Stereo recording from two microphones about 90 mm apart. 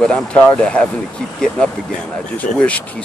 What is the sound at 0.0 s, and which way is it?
Speech, 10° left (ahead or behind).